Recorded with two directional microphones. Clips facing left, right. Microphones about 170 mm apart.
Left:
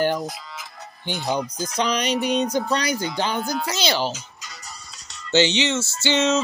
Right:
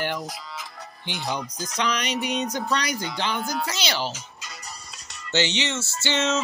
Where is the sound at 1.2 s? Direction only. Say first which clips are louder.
Left 5 dB; 30° left (ahead or behind).